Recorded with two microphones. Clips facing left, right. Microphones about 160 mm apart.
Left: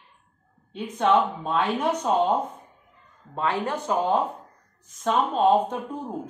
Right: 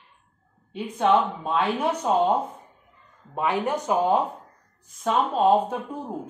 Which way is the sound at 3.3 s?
15° right (ahead or behind).